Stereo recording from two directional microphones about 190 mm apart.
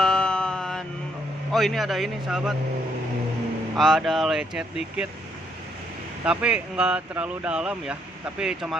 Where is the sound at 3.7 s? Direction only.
Centre (ahead or behind).